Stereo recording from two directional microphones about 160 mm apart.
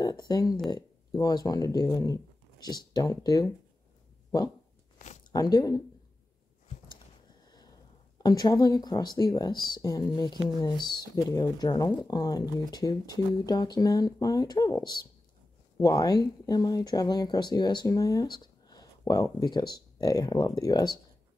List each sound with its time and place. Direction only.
0.0 s speech: 25° left (ahead or behind)
4.9 s a sound: 45° left (ahead or behind)
5.3 s speech: 25° left (ahead or behind)
8.2 s speech: 25° left (ahead or behind)